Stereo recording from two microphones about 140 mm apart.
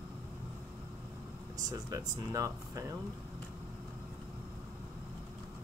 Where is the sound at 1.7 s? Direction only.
25° right (ahead or behind).